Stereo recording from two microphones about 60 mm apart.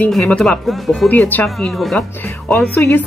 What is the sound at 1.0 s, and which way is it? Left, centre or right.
Speech, left.